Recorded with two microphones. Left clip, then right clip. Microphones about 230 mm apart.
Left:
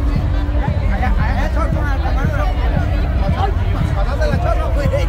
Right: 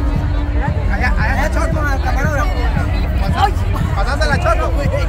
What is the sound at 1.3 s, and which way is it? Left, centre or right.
Music, right.